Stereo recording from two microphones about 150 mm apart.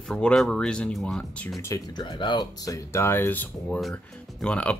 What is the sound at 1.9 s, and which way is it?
Speech, 30° left (ahead or behind).